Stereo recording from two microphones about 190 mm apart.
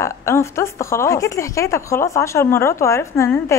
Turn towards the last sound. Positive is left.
turn(degrees=15)  # may be behind; listen again after turning